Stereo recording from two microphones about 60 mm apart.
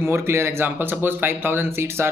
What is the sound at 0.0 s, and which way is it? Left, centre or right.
Speech, right.